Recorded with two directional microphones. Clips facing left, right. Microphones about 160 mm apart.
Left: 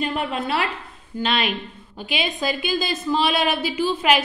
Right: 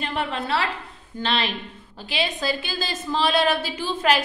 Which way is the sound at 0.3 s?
15° left (ahead or behind).